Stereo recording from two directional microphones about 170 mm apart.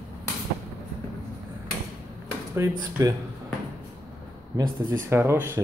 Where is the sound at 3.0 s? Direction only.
20° right (ahead or behind).